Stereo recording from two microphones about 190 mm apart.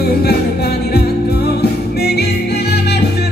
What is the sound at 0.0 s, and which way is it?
Music, 55° left (ahead or behind).